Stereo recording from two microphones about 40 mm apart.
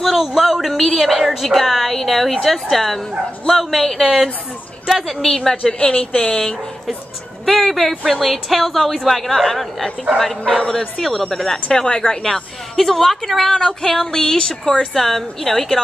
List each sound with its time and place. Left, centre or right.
0.0 s music: centre
4.8 s speech: centre
5.7 s a woman's voice: left
7.4 s speech: centre
8.0 s music: centre
11.7 s a woman's voice: centre
12.2 s music: centre
13.7 s speech: centre
15.0 s music: centre